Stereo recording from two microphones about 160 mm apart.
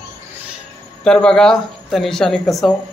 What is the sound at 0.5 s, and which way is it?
Speech, 5° left (ahead or behind).